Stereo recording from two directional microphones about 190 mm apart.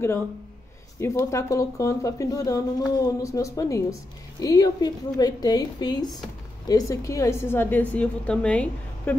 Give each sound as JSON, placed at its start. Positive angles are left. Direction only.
{"t": 0.9, "sound": "a woman's voice", "side_deg": 15}